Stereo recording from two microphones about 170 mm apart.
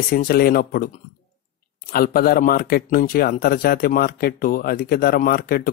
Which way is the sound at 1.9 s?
60° left (ahead or behind).